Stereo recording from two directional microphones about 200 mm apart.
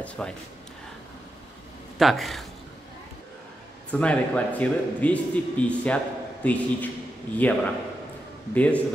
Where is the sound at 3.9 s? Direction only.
5° left (ahead or behind).